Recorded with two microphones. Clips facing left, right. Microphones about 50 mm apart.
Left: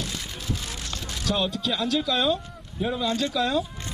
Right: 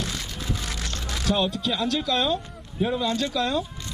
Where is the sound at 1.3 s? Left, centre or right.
Centre.